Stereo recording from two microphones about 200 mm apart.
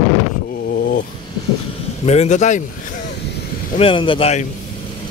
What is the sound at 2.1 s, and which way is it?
Speech, 35° left (ahead or behind).